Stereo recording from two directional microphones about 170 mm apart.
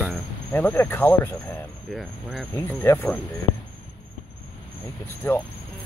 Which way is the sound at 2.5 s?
15° left (ahead or behind).